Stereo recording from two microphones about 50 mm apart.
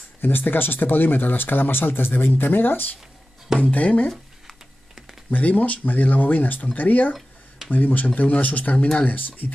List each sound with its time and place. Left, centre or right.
0.2 s speech: left
3.6 s speech: left
5.3 s speech: left
7.2 s a sound: centre
7.7 s speech: left